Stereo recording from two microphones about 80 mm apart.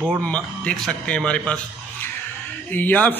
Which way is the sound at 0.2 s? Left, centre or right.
Centre.